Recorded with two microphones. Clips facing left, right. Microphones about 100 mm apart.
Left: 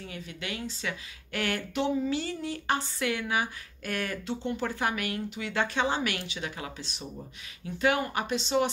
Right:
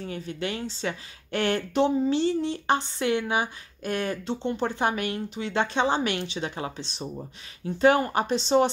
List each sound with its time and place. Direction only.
0.0 s speech: 35° right (ahead or behind)